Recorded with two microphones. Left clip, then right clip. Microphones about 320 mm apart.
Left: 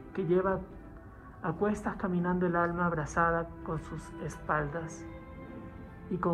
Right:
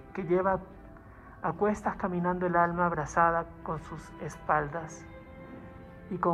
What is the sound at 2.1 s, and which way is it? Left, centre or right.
Speech, centre.